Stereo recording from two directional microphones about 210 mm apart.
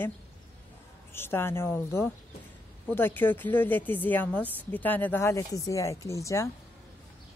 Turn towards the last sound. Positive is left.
turn(degrees=15)  # may be behind; listen again after turning